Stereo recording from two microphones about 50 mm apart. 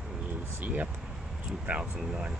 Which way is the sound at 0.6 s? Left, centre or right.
Right.